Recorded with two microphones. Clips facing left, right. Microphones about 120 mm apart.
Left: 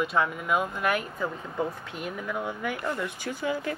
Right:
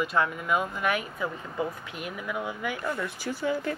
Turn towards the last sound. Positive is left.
turn(degrees=15)  # may be behind; listen again after turning